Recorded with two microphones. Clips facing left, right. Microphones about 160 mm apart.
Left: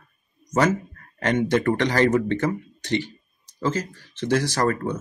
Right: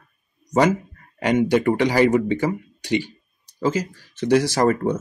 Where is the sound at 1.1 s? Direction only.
10° right (ahead or behind).